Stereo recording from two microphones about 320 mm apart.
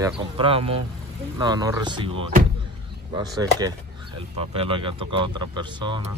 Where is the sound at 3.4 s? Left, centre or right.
Centre.